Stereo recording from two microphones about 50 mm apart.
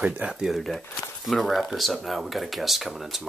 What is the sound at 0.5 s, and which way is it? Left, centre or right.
Speech, centre.